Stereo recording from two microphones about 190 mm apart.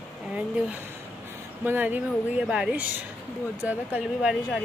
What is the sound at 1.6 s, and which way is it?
Speech, 10° right (ahead or behind).